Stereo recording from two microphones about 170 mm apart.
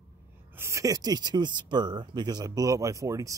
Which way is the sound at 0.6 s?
15° right (ahead or behind).